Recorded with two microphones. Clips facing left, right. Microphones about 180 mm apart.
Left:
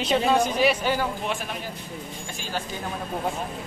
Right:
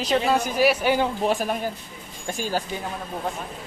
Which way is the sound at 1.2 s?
40° right (ahead or behind).